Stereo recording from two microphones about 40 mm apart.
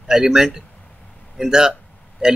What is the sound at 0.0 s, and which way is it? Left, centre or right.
Speech, centre.